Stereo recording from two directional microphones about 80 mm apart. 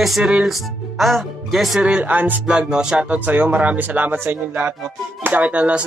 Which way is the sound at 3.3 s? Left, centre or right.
Right.